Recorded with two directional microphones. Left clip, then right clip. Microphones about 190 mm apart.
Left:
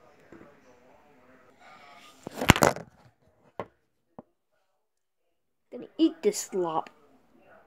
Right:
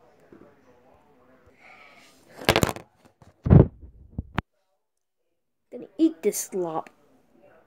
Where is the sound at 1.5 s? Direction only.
35° left (ahead or behind).